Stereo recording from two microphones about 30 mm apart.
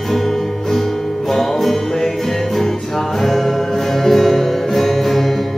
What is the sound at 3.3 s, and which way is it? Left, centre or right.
Music, centre.